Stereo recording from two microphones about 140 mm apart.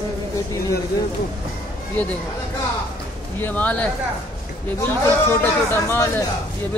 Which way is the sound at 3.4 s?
10° left (ahead or behind).